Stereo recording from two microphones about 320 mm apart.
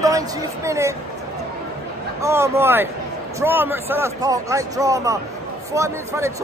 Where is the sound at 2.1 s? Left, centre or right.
Centre.